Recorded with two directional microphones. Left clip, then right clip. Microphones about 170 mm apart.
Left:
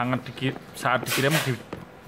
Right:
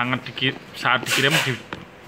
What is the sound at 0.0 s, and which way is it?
Speech, 30° left (ahead or behind).